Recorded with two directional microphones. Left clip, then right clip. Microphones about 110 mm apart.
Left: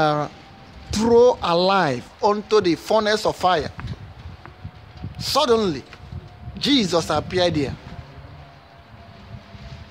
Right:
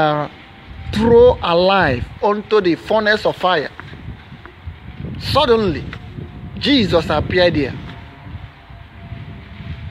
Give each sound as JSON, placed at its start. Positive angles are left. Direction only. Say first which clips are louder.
{"t": 0.0, "sound": "speech", "louder": "right 3 dB", "side_deg": 20}
{"t": 5.2, "sound": "speech", "louder": "right 4 dB", "side_deg": 15}